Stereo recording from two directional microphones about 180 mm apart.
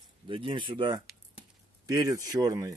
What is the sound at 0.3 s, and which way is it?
Speech, 30° right (ahead or behind).